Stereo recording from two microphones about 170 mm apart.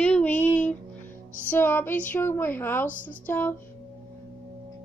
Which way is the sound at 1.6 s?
10° left (ahead or behind).